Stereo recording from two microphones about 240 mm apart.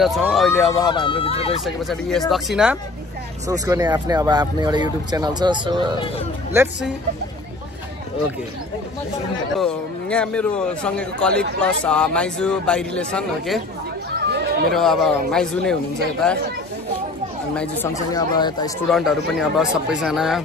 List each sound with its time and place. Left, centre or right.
0.0 s speech: centre
0.8 s speech: centre
1.6 s speech: centre
3.4 s speech: centre
6.5 s speech: centre
9.6 s speech: centre
14.2 s chatter: right
14.7 s speech: centre
17.6 s speech: centre
18.9 s speech: centre